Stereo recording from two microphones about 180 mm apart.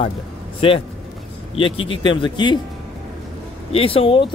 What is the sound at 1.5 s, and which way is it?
Speech, 30° left (ahead or behind).